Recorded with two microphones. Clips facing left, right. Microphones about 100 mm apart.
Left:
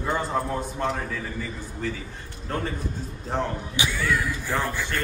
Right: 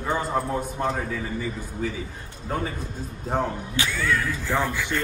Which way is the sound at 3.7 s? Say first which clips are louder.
Even; 15° left (ahead or behind).